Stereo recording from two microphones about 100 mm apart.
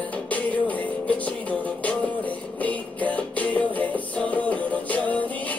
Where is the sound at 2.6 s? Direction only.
15° left (ahead or behind).